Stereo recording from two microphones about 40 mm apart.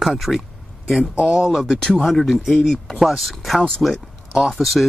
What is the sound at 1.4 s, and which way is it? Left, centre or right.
Speech, centre.